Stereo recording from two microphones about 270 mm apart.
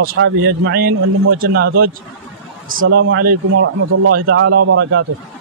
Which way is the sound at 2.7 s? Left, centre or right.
Right.